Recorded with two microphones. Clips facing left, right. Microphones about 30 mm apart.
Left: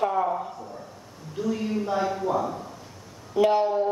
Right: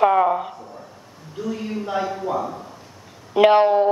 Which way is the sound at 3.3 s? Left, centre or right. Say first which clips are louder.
Right 7 dB; right.